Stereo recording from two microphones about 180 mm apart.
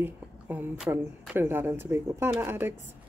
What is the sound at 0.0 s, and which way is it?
Speech, 10° right (ahead or behind).